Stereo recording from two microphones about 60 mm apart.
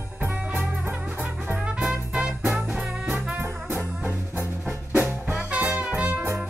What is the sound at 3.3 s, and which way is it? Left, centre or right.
Music, right.